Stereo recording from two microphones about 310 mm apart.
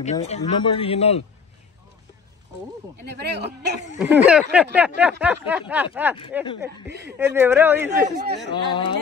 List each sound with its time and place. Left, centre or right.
0.0 s speech: left
3.2 s speech: right
4.3 s speech: centre
7.9 s speech: right
8.5 s speech: centre